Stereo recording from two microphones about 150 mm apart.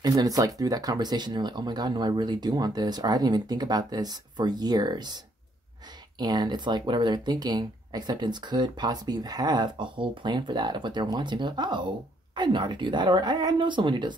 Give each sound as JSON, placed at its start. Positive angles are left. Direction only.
{"t": 0.0, "sound": "speech", "side_deg": -25}